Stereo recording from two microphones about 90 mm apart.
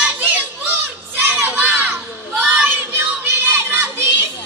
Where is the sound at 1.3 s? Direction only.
20° right (ahead or behind).